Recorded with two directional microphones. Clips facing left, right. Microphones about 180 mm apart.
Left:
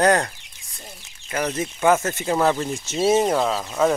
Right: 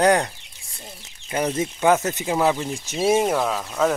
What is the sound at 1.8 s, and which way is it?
Speech, 10° right (ahead or behind).